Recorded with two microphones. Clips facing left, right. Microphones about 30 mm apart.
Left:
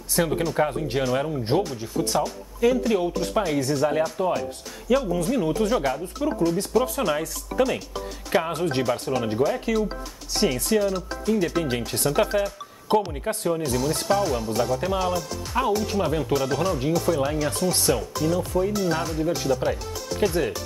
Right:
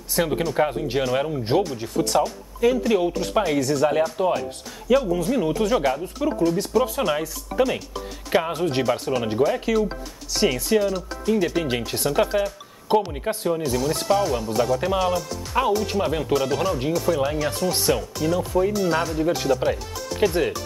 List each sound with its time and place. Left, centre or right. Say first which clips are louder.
0.1 s speech: right 1 dB; centre
12.1 s speech: right 1 dB; centre
14.8 s speech: right 2 dB; centre
16.9 s speech: right 1 dB; centre
18.1 s speech: right 2 dB; centre
19.1 s speech: right 2 dB; right
19.5 s speech: right 2 dB; centre
20.2 s speech: right 2 dB; centre